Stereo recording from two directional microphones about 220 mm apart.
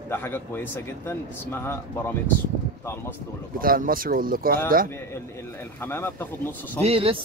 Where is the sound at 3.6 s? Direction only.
40° right (ahead or behind).